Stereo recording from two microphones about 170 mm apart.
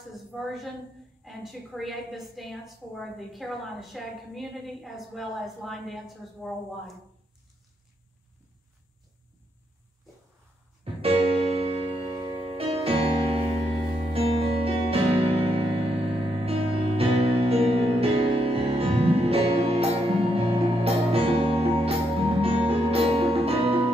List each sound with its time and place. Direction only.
0.1 s a sound: centre (ahead or behind)
1.2 s a woman's voice: centre (ahead or behind)
10.8 s music: 35° right (ahead or behind)